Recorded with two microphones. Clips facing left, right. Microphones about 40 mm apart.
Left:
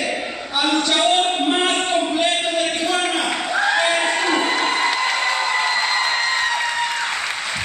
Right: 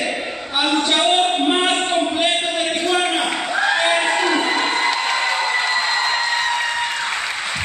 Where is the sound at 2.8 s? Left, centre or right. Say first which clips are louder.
Right 1 dB; centre.